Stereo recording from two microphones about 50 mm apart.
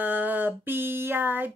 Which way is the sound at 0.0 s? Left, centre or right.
Right.